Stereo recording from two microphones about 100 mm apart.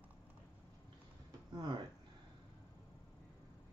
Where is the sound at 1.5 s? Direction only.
40° right (ahead or behind).